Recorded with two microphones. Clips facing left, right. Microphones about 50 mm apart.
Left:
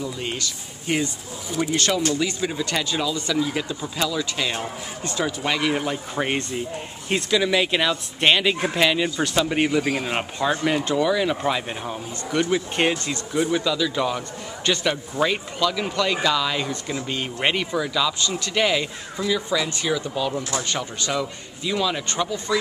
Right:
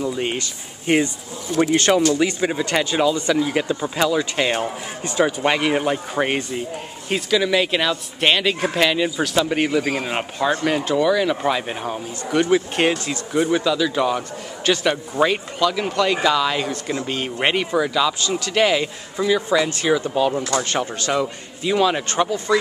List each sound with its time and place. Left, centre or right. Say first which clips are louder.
0.0 s speech: right 5 dB; right
7.1 s speech: right 2 dB; centre; by 22.6 s right